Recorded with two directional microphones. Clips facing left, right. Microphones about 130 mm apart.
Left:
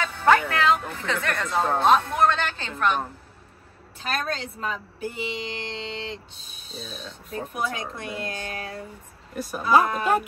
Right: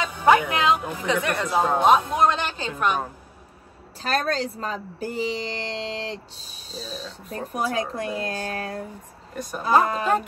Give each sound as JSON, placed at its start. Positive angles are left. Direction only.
{"t": 0.0, "sound": "speech", "side_deg": -15}
{"t": 4.0, "sound": "a woman's voice", "side_deg": -40}
{"t": 9.3, "sound": "speech", "side_deg": 5}